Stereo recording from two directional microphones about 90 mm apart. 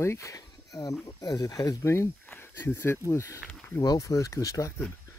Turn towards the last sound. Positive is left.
turn(degrees=40)  # may be behind; listen again after turning